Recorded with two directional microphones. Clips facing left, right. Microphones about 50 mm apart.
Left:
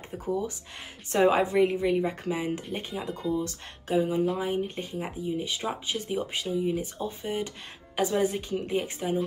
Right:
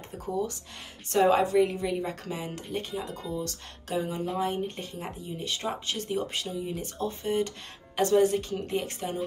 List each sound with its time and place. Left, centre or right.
1.1 s a woman's voice: left